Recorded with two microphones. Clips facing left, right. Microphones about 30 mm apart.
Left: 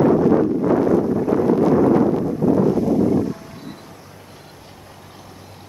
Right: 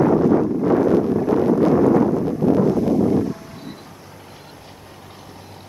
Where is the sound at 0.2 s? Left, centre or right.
Centre.